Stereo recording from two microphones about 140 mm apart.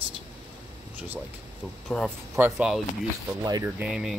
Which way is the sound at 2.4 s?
10° right (ahead or behind).